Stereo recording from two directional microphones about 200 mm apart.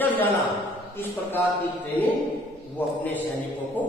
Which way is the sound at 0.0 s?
10° left (ahead or behind).